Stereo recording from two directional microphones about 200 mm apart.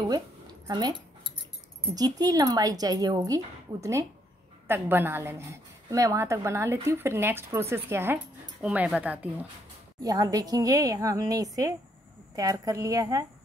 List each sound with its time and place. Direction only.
0.7 s speech: 20° right (ahead or behind)
2.0 s a woman's voice: 20° right (ahead or behind)